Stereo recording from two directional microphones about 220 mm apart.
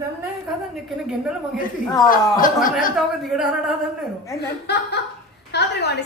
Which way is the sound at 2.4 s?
40° left (ahead or behind).